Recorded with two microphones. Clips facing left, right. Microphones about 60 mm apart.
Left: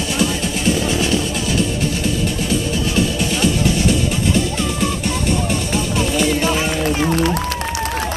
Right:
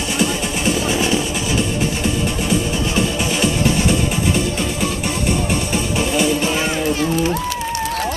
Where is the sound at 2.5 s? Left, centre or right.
Centre.